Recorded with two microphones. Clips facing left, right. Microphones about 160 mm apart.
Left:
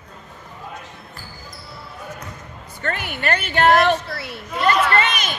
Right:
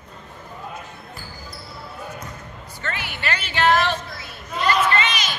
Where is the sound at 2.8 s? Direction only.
55° left (ahead or behind).